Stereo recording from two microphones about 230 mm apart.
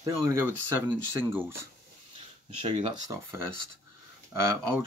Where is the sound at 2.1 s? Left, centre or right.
Right.